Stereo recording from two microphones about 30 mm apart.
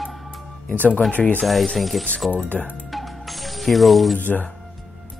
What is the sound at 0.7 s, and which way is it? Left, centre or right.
Speech, left.